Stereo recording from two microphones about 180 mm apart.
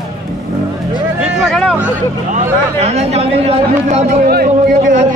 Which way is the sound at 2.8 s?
35° right (ahead or behind).